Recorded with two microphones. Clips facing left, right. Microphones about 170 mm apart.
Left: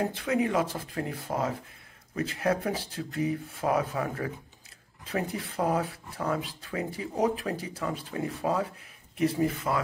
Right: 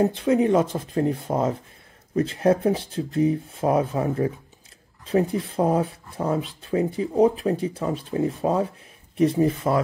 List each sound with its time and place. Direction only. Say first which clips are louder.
0.0 s speech: right 8 dB; 25° right (ahead or behind)